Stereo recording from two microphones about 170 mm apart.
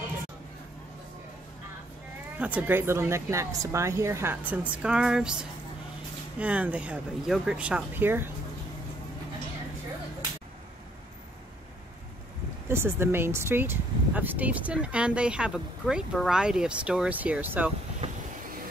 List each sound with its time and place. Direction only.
2.3 s speech: 10° right (ahead or behind)
12.6 s speech: 15° right (ahead or behind)
18.0 s vehicle: 35° right (ahead or behind)